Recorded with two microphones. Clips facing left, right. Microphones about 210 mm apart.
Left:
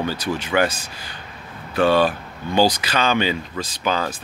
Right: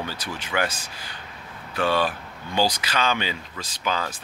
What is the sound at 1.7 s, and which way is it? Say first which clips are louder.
Speech: left 6 dB; 35° left (ahead or behind).